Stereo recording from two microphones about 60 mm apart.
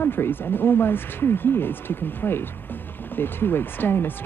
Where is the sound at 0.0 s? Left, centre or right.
Left.